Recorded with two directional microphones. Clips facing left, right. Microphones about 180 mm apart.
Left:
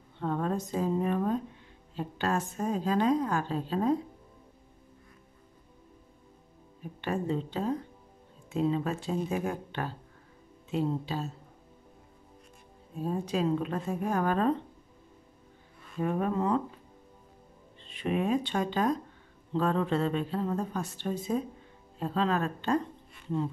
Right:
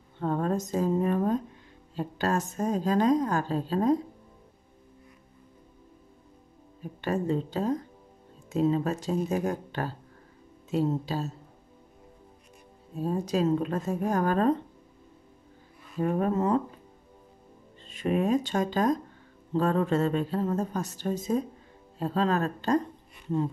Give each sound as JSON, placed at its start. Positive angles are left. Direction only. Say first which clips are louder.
{"t": 0.2, "sound": "a sound", "louder": "right 3 dB", "side_deg": -40}
{"t": 2.0, "sound": "a woman's voice", "louder": "right 2 dB", "side_deg": -40}
{"t": 7.0, "sound": "a woman's voice", "louder": "right 3 dB", "side_deg": -40}
{"t": 13.1, "sound": "a woman's voice", "louder": "right 3 dB", "side_deg": -40}
{"t": 16.0, "sound": "a woman's voice", "louder": "right 3 dB", "side_deg": -40}
{"t": 17.8, "sound": "a woman's voice", "louder": "right 3 dB", "side_deg": -45}